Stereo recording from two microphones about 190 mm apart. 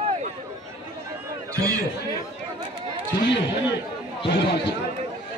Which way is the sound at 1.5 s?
20° right (ahead or behind).